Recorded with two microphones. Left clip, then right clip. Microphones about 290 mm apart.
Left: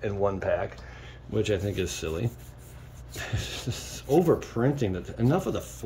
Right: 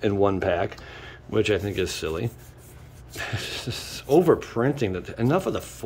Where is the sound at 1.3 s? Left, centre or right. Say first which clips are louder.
Right 4 dB; centre.